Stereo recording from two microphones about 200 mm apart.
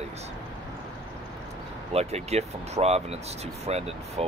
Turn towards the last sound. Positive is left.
turn(degrees=-30)  # may be behind; listen again after turning